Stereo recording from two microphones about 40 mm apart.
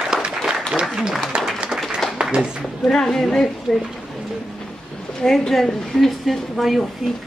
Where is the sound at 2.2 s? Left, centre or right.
Right.